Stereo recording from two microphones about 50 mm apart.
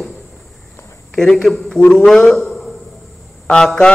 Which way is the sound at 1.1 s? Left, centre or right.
Centre.